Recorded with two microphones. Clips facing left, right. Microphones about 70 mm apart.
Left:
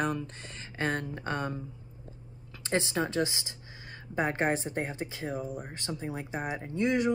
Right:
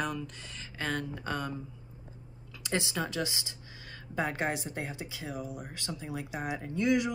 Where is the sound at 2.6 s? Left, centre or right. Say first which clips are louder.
Left 3 dB; left.